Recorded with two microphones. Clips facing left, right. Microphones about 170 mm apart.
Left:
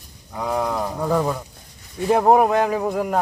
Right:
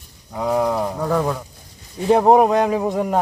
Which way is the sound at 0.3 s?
5° right (ahead or behind).